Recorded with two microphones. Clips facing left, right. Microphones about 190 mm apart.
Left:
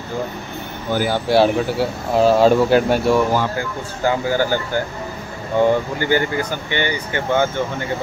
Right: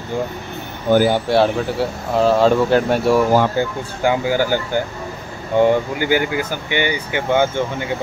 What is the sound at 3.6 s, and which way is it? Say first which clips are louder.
Speech: right 6 dB; 25° right (ahead or behind).